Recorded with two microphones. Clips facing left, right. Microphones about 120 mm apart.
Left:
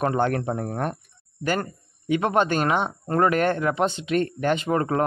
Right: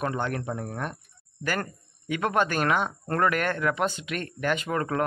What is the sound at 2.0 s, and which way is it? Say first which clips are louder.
Speech: left 4 dB; 25° left (ahead or behind).